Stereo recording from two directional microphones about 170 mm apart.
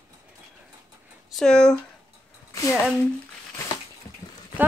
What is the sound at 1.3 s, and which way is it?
Speech, 5° left (ahead or behind).